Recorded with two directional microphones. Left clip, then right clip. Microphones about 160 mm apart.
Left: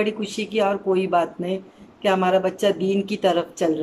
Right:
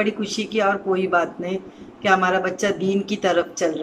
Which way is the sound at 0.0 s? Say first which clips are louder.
Right 1 dB; 20° left (ahead or behind).